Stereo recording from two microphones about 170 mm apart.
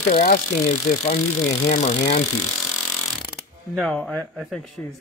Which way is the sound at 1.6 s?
40° left (ahead or behind).